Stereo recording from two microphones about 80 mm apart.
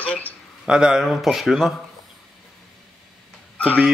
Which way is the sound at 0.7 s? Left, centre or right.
Centre.